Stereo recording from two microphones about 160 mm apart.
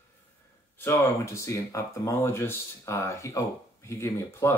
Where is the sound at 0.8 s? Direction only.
15° left (ahead or behind).